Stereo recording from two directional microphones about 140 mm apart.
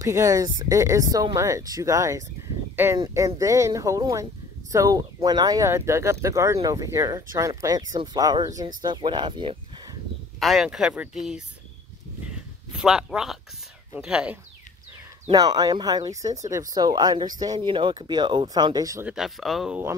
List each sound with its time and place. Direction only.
0.0 s speech: 25° right (ahead or behind)
10.4 s speech: centre (ahead or behind)
12.8 s speech: 5° right (ahead or behind)
15.3 s speech: 30° right (ahead or behind)
19.0 s speech: 5° right (ahead or behind)